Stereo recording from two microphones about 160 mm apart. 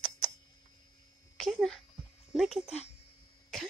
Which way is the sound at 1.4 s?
Centre (ahead or behind).